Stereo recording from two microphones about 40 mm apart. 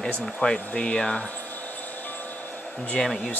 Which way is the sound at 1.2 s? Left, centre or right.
Left.